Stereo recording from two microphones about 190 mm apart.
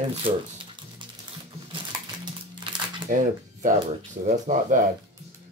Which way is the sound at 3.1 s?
50° right (ahead or behind).